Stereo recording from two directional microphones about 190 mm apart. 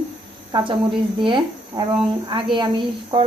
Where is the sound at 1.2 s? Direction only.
25° right (ahead or behind).